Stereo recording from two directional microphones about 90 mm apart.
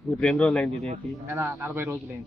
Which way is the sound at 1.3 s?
25° right (ahead or behind).